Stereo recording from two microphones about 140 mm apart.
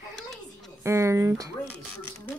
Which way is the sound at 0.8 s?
20° right (ahead or behind).